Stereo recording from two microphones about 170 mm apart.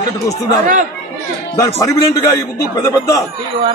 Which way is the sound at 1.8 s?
20° left (ahead or behind).